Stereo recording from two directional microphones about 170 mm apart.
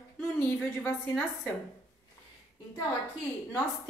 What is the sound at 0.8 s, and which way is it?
Speech, 10° left (ahead or behind).